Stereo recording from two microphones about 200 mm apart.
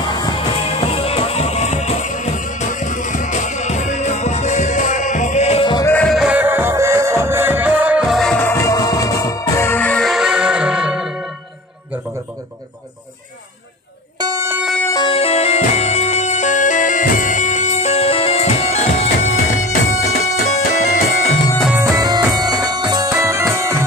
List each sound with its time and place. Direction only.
0.0 s music: 20° left (ahead or behind)
5.9 s music: 5° left (ahead or behind)
14.2 s music: 15° right (ahead or behind)
14.7 s music: 10° left (ahead or behind)
15.0 s music: 25° left (ahead or behind)
19.2 s music: 90° left
20.4 s music: 35° left (ahead or behind)
21.9 s music: 20° right (ahead or behind)